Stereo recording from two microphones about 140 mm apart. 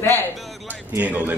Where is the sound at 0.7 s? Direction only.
10° right (ahead or behind).